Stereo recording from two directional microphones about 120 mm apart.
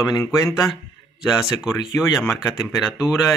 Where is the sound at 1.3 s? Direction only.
5° right (ahead or behind).